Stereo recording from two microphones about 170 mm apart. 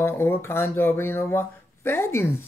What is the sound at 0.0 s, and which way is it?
Speech, 15° left (ahead or behind).